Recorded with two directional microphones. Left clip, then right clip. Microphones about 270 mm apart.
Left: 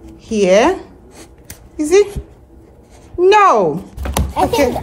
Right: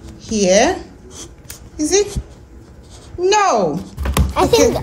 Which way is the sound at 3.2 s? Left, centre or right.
Centre.